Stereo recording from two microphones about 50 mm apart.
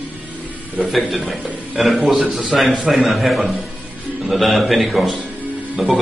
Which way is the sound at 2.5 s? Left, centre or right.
Centre.